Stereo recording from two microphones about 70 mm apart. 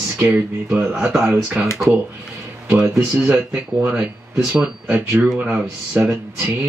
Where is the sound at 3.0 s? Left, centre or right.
Right.